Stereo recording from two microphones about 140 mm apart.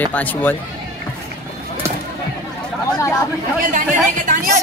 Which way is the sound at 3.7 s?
65° right (ahead or behind).